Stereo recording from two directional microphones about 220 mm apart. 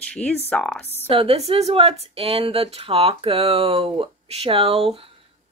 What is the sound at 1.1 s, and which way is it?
A woman's voice, 25° right (ahead or behind).